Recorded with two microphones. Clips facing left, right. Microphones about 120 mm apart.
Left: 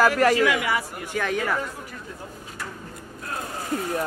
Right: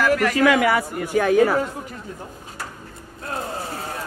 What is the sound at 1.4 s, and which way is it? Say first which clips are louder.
Speech: right 8 dB; 35° right (ahead or behind).